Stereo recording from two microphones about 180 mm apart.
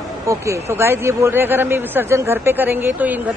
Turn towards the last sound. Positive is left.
turn(degrees=-10)  # may be behind; listen again after turning